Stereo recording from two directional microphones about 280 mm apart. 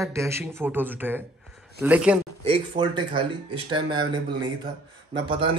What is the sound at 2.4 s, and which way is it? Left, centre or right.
A man's voice, centre.